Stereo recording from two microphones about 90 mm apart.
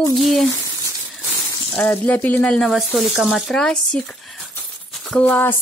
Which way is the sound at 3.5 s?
10° left (ahead or behind).